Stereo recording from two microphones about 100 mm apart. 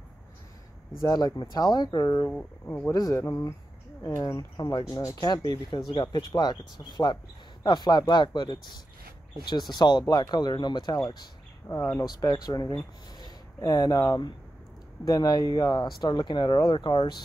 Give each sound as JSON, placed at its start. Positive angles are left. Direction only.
{"t": 1.0, "sound": "speech", "side_deg": 40}
{"t": 2.0, "sound": "speech", "side_deg": 30}
{"t": 2.6, "sound": "speech", "side_deg": 20}
{"t": 2.9, "sound": "speech", "side_deg": 35}
{"t": 11.6, "sound": "speech", "side_deg": 30}
{"t": 12.0, "sound": "speech", "side_deg": 40}